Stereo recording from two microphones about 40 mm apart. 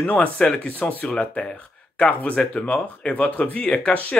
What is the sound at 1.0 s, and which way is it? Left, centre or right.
Speech, left.